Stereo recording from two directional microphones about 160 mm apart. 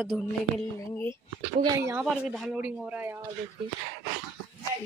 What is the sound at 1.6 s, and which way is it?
Speech, 20° right (ahead or behind).